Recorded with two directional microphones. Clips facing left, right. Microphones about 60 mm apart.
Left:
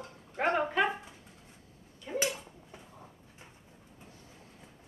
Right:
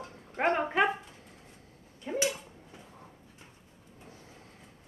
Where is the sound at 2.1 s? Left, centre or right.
Right.